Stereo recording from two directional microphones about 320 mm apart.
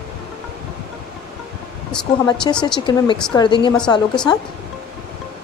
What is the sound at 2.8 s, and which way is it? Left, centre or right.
Speech, centre.